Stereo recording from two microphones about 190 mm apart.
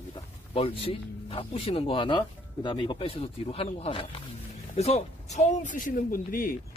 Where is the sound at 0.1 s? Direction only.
30° left (ahead or behind).